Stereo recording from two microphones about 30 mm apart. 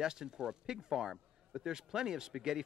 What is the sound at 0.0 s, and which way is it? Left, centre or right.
Speech, right.